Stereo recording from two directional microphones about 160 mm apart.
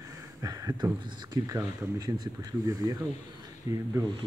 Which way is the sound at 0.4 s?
20° right (ahead or behind).